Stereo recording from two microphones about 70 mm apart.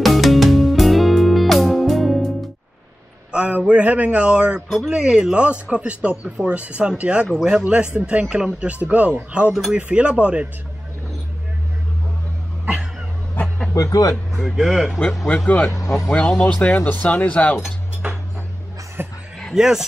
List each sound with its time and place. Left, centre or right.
0.0 s music: centre
3.3 s a man's voice: centre
4.6 s speech: centre
4.9 s speech: centre
13.7 s speech: left
14.4 s speech: centre
15.3 s speech: centre
19.0 s a sound: right
19.5 s speech: centre